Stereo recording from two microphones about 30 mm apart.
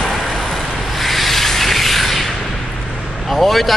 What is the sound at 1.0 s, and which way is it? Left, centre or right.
Sanding, centre.